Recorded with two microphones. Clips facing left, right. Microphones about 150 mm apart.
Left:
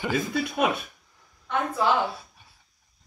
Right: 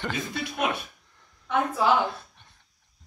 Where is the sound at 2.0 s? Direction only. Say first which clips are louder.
Even; 5° left (ahead or behind).